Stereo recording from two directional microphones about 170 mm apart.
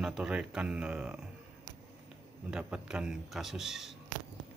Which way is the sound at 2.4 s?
5° right (ahead or behind).